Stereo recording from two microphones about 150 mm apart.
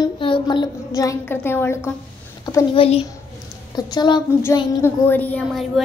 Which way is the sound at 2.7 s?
40° left (ahead or behind).